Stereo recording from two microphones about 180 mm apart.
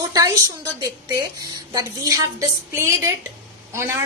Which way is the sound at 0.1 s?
20° right (ahead or behind).